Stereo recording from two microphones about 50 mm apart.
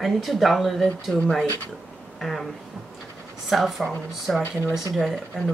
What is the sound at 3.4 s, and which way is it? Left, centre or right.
Speech, centre.